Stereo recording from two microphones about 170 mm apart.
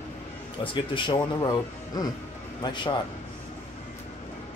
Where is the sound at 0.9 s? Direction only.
25° left (ahead or behind).